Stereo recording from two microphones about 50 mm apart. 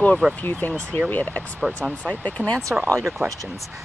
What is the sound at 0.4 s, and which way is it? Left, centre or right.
Speech, left.